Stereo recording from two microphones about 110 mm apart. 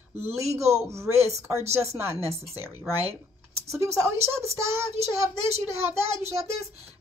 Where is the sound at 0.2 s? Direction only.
25° right (ahead or behind).